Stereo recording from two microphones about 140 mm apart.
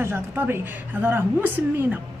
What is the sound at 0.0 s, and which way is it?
A woman's voice, 15° right (ahead or behind).